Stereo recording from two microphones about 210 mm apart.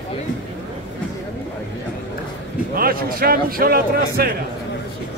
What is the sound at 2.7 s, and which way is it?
A man's voice, 45° right (ahead or behind).